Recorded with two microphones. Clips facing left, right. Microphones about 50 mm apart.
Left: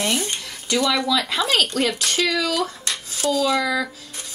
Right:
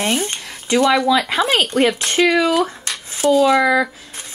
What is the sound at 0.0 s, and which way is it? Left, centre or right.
Speech, right.